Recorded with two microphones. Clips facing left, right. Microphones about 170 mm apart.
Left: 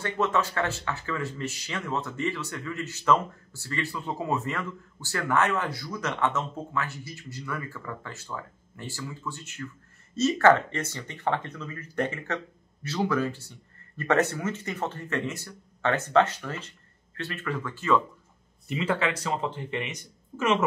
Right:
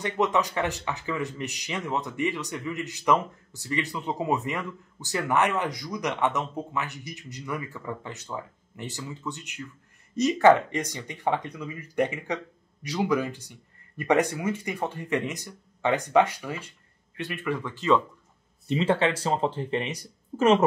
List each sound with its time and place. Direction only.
0.0 s speech: 15° right (ahead or behind)
18.7 s speech: 30° right (ahead or behind)